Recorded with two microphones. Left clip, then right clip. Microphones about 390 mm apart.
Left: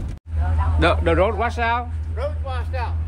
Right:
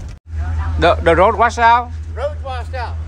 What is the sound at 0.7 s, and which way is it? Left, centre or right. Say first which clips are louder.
Speech: right 7 dB; centre.